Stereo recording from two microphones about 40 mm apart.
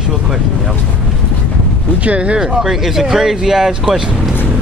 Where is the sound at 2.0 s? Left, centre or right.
Right.